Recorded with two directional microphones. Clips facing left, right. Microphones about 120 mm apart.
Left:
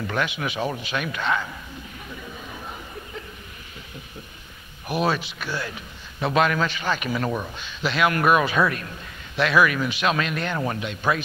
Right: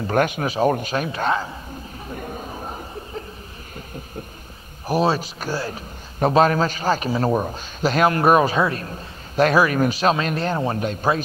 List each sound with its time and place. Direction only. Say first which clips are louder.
0.1 s a man's voice: right 8 dB; 45° right (ahead or behind)
2.0 s a sound: right 8 dB; 45° right (ahead or behind)
4.8 s a man's voice: right 4 dB; 35° right (ahead or behind)